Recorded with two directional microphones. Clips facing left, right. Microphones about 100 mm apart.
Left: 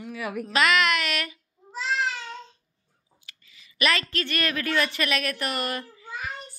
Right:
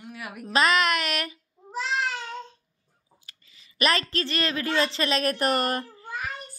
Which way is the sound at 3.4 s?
35° right (ahead or behind).